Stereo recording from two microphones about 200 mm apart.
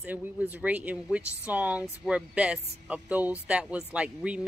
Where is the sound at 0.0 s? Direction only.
10° right (ahead or behind).